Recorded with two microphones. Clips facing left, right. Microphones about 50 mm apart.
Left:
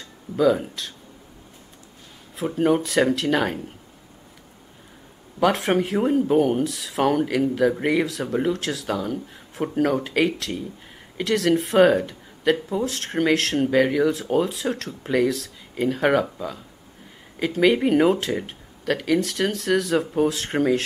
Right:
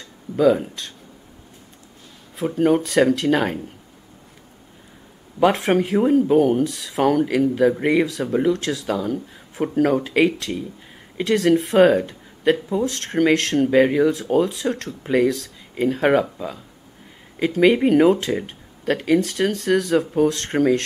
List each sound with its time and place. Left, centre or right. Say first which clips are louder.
0.4 s speech: right 3 dB; centre
2.3 s speech: right 2 dB; centre
5.5 s speech: right 3 dB; centre
13.7 s speech: right 3 dB; centre
14.1 s speech: right 3 dB; centre
15.7 s speech: right 2 dB; centre